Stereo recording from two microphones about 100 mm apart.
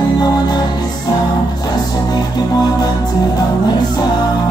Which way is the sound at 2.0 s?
40° left (ahead or behind).